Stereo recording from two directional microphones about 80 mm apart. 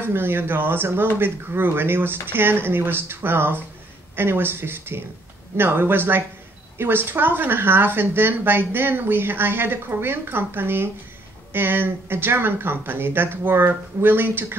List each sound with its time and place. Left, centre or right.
0.0 s a woman's voice: right